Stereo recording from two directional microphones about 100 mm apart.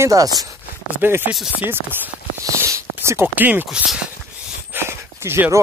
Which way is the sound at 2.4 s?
30° right (ahead or behind).